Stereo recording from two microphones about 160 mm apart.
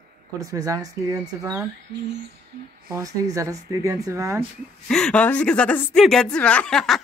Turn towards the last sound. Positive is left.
turn(degrees=5)  # may be behind; listen again after turning